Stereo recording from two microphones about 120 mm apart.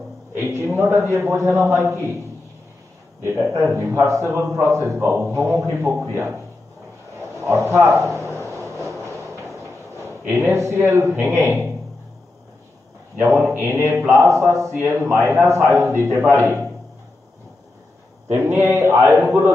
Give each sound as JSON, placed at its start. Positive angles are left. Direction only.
{"t": 0.3, "sound": "a man's voice", "side_deg": -20}
{"t": 3.2, "sound": "a man's voice", "side_deg": -20}
{"t": 7.2, "sound": "a sound", "side_deg": -20}
{"t": 11.2, "sound": "a man's voice", "side_deg": -20}
{"t": 13.2, "sound": "a sound", "side_deg": -20}
{"t": 14.2, "sound": "a man's voice", "side_deg": -25}
{"t": 18.3, "sound": "a man's voice", "side_deg": -20}